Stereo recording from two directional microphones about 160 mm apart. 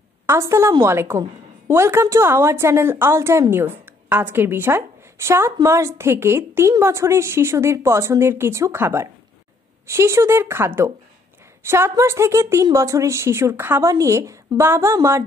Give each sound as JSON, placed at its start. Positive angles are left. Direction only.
{"t": 0.3, "sound": "a woman's voice", "side_deg": -15}